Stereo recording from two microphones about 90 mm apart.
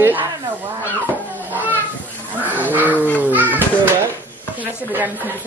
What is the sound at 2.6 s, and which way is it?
Speech, 20° right (ahead or behind).